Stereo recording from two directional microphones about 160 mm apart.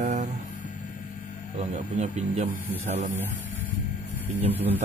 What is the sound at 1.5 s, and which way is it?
Speech, 45° right (ahead or behind).